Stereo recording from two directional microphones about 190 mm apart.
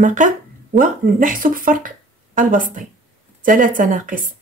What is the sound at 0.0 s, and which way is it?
Speech, 40° right (ahead or behind).